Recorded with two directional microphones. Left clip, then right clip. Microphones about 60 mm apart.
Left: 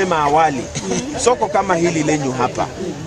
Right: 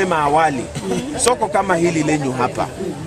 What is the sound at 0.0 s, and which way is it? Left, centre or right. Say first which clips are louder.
Speech: left 1 dB; centre.